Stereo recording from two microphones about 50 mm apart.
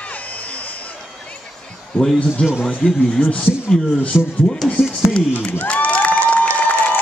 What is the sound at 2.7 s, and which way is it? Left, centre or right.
Speech, left.